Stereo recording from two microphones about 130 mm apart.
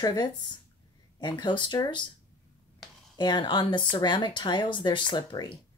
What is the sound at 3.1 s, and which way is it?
Speech, 35° left (ahead or behind).